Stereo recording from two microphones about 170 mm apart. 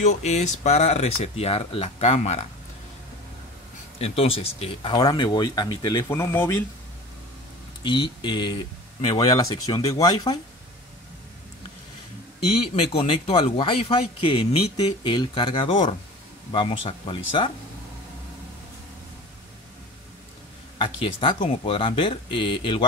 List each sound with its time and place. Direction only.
0.0 s speech: 40° left (ahead or behind)
4.0 s speech: 35° left (ahead or behind)
4.9 s speech: 25° left (ahead or behind)
7.8 s speech: 30° left (ahead or behind)
12.9 s speech: 35° left (ahead or behind)
20.7 s speech: 30° left (ahead or behind)